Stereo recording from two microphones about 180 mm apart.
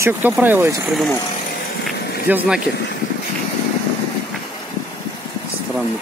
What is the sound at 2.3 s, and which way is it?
Speech, 10° right (ahead or behind).